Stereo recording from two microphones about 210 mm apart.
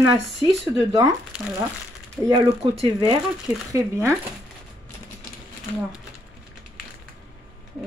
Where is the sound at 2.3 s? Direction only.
25° right (ahead or behind).